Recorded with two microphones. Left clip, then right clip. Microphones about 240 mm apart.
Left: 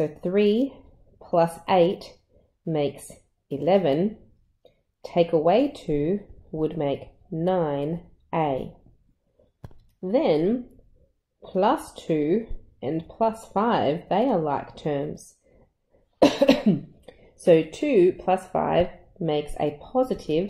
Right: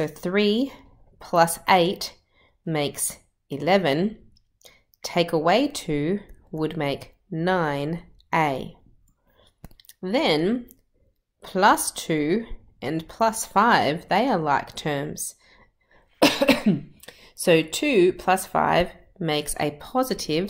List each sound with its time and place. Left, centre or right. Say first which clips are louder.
0.0 s a woman's voice: left 1 dB; centre
10.0 s a woman's voice: even; centre
16.2 s cough: left 1 dB; right
17.0 s speech: left 2 dB; centre